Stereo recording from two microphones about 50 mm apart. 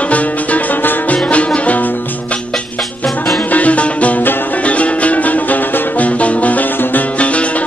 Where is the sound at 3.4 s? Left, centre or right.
Left.